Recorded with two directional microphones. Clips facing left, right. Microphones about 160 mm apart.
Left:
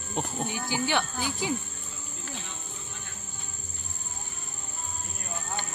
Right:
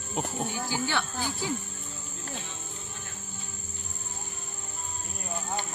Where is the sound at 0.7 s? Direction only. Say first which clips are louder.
Left 5 dB; 15° left (ahead or behind).